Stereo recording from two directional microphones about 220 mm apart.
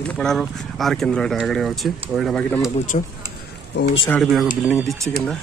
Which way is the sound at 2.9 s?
30° left (ahead or behind).